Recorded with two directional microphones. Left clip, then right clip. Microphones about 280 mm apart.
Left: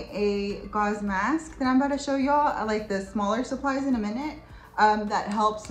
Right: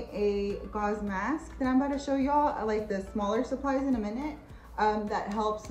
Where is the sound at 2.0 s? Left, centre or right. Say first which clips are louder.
Left 4 dB; centre.